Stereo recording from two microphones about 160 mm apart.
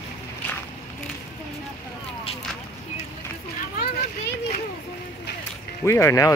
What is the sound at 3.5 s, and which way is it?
Children playing, 70° left (ahead or behind).